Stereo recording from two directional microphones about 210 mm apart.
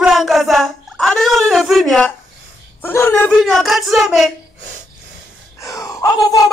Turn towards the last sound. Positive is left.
turn(degrees=15)  # may be behind; listen again after turning